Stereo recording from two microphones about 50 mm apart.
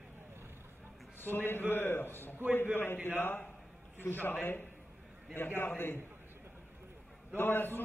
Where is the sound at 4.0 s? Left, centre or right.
Left.